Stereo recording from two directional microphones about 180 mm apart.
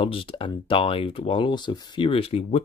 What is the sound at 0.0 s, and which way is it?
Speech, 30° left (ahead or behind).